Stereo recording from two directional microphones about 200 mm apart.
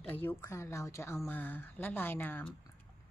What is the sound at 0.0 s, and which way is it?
A woman's voice, 10° left (ahead or behind).